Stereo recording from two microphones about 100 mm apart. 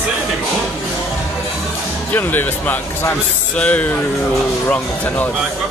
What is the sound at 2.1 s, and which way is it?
Speech, 20° left (ahead or behind).